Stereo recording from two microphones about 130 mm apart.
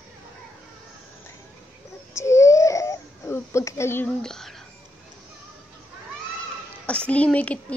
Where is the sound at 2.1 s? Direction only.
20° left (ahead or behind).